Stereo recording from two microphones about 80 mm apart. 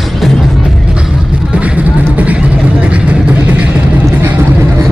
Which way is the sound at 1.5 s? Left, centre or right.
Centre.